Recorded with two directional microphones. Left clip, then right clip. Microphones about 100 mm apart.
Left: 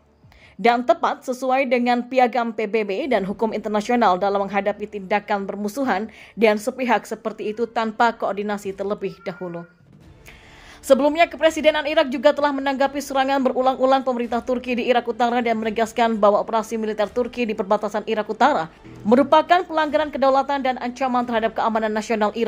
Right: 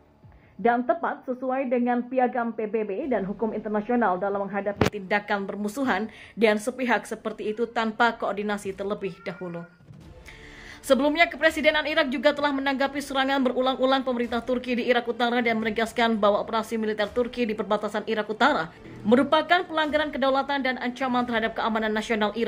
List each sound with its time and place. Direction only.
0.7 s a woman's voice: 50° left (ahead or behind)
1.5 s a woman's voice: 85° left
4.9 s a woman's voice: 25° left (ahead or behind)
10.9 s a woman's voice: 30° left (ahead or behind)
19.0 s a woman's voice: 35° left (ahead or behind)